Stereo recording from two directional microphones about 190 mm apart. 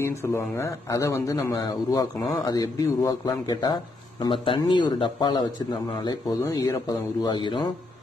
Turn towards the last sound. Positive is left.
turn(degrees=25)  # may be behind; listen again after turning